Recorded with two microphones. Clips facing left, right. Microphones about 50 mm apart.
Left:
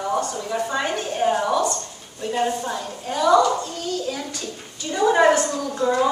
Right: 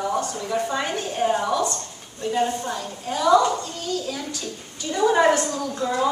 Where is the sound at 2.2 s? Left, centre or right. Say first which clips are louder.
Even; centre.